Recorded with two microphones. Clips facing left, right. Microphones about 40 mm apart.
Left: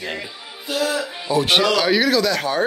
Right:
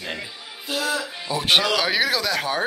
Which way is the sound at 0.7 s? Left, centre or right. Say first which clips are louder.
Left 3 dB; centre.